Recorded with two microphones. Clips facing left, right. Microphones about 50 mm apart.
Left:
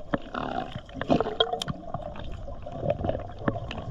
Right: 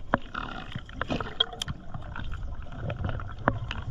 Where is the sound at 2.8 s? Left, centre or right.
Centre.